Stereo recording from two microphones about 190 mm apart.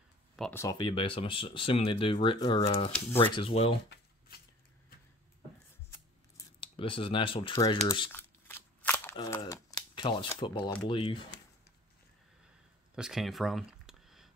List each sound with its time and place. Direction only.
0.4 s speech: 10° left (ahead or behind)
0.7 s speech: 25° left (ahead or behind)
6.6 s speech: 25° left (ahead or behind)
8.1 s shuffling cards: 10° left (ahead or behind)
9.1 s speech: 25° left (ahead or behind)
12.9 s a sound: centre (ahead or behind)